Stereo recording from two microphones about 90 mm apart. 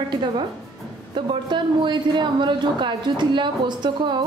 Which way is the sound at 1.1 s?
65° right (ahead or behind).